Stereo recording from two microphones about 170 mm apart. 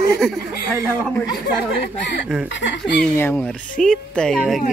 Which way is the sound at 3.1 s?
10° left (ahead or behind).